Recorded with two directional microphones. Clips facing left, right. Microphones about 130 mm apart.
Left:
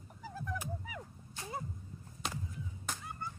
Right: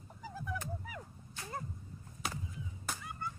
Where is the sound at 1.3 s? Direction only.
15° left (ahead or behind).